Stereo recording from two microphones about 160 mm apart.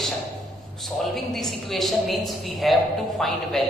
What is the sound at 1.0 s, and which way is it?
A woman's voice, centre (ahead or behind).